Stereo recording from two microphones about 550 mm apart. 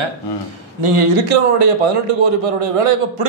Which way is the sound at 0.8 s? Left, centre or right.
Right.